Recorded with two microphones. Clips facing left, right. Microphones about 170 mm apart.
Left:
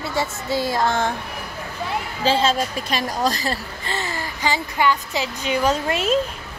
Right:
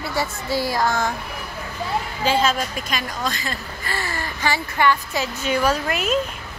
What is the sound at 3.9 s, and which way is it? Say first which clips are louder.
A woman's voice: left 1 dB; 20° left (ahead or behind).